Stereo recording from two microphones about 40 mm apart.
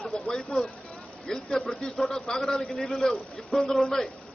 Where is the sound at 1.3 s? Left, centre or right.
Centre.